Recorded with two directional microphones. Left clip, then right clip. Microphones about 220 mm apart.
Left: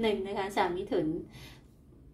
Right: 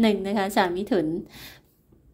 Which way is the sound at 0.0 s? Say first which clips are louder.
Right 7 dB; 50° right (ahead or behind).